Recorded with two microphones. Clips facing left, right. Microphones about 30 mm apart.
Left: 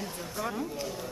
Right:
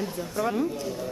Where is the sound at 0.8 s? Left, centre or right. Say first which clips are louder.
Right 4 dB; centre.